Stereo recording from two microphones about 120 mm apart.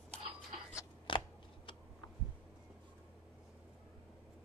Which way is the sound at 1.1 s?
45° left (ahead or behind).